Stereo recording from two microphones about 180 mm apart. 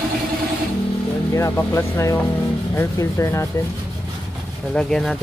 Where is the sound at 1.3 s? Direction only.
15° left (ahead or behind).